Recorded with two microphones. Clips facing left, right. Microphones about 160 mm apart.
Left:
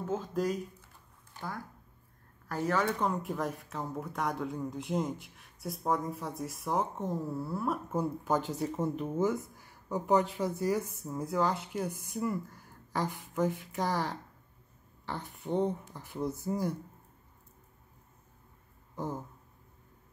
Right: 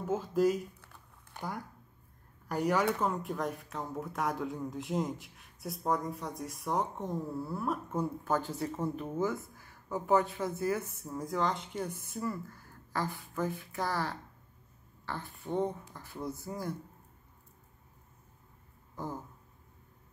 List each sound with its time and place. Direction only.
0.0 s a woman's voice: 10° right (ahead or behind)
1.3 s a sound: 65° right (ahead or behind)
2.4 s a woman's voice: 15° right (ahead or behind); by 15.6 s 20° left (ahead or behind)
16.2 s a woman's voice: centre (ahead or behind)